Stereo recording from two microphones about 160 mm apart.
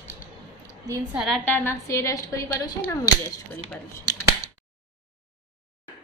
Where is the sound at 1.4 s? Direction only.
15° left (ahead or behind).